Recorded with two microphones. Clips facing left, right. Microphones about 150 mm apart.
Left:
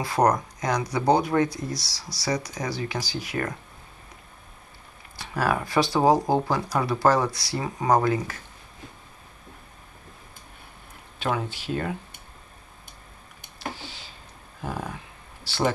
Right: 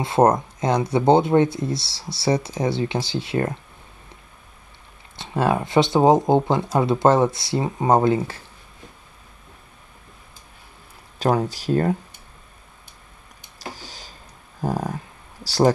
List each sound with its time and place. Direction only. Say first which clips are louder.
0.0 s speech: right 5 dB; 25° right (ahead or behind)
5.1 s speech: right 4 dB; 25° right (ahead or behind)
11.1 s speech: right 7 dB; 40° right (ahead or behind)
13.6 s a sound: left 1 dB; 40° right (ahead or behind)
14.6 s speech: right 7 dB; 40° right (ahead or behind)